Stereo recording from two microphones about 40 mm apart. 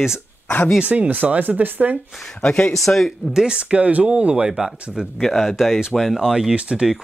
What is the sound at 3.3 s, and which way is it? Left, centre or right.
Speech, centre.